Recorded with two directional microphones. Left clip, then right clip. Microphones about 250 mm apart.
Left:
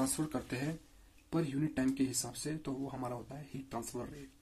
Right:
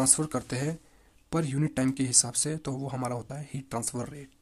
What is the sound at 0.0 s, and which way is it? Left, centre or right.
Speech, right.